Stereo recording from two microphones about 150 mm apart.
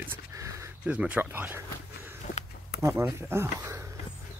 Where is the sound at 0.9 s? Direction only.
10° right (ahead or behind).